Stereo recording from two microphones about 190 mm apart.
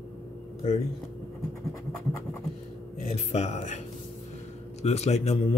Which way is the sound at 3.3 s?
35° left (ahead or behind).